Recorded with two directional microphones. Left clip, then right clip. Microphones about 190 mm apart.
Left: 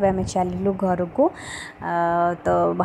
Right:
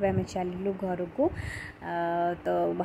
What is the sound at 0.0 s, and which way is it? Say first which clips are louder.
Speech: left 8 dB; 10° left (ahead or behind).